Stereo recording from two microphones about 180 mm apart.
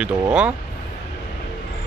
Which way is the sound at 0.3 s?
5° right (ahead or behind).